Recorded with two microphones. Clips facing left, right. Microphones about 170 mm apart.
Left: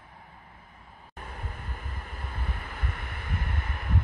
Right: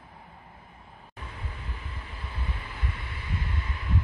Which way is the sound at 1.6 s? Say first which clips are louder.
Left 1 dB; 45° left (ahead or behind).